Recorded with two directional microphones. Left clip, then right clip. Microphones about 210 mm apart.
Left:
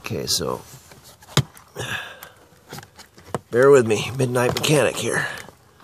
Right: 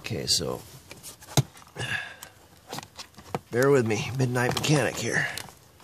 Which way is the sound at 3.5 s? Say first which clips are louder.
Left 8 dB; 15° left (ahead or behind).